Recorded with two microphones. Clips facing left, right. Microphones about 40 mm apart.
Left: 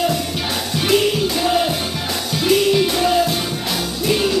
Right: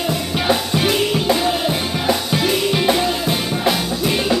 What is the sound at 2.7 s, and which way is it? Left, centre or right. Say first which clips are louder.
Music: left 2 dB; centre.